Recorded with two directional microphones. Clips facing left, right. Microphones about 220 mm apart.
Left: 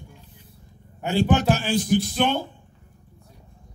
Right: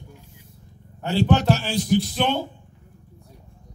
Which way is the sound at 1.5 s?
50° left (ahead or behind).